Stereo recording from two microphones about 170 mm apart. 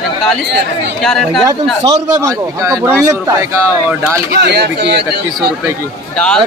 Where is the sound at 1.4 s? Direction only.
20° right (ahead or behind).